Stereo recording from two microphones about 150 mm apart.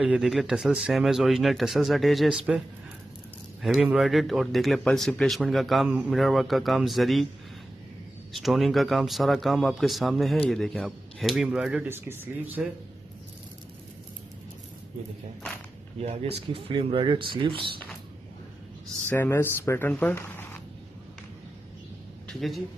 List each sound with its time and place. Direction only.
0.0 s speech: 5° right (ahead or behind)
3.6 s speech: centre (ahead or behind)
8.3 s speech: centre (ahead or behind)
16.0 s speech: 45° right (ahead or behind)
19.0 s speech: 15° left (ahead or behind)
22.3 s speech: centre (ahead or behind)